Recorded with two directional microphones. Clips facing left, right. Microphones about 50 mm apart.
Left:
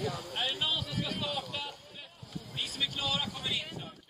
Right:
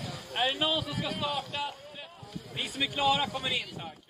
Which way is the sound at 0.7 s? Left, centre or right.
Centre.